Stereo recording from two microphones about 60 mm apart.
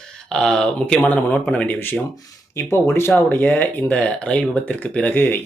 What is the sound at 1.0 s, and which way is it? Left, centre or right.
Speech, left.